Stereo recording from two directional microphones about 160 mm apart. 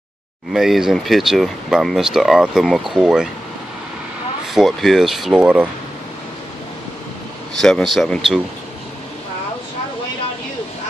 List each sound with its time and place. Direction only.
0.5 s speech: centre (ahead or behind)
4.6 s speech: 5° right (ahead or behind)
7.6 s speech: centre (ahead or behind)